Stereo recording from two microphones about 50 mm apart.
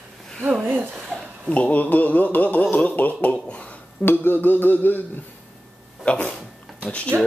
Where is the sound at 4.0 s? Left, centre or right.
Left.